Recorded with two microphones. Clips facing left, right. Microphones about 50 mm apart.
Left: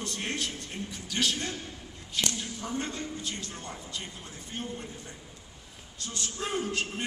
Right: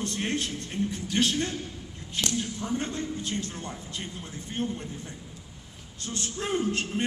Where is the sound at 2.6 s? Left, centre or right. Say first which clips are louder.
Right 3 dB; right.